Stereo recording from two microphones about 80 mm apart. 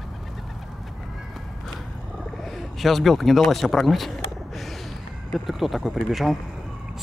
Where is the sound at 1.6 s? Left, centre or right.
Centre.